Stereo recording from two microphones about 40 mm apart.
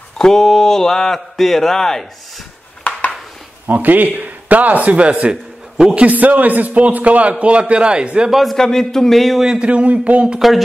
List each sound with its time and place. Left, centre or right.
0.2 s speech: centre
3.6 s speech: right
5.3 s a sound: centre
5.9 s a man's voice: right
8.3 s speech: centre
8.5 s speech: centre
9.6 s a man's voice: right
10.4 s speech: centre